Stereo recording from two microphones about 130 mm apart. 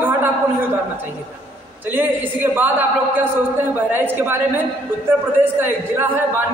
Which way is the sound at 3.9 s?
15° right (ahead or behind).